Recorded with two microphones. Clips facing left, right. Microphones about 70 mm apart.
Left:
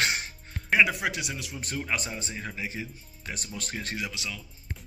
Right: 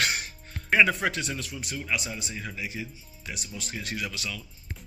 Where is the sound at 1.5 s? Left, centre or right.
Left.